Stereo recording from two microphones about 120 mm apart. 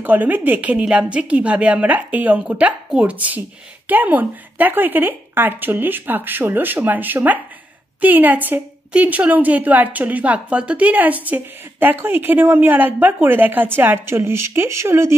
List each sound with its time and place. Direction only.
0.0 s a woman's voice: 15° right (ahead or behind)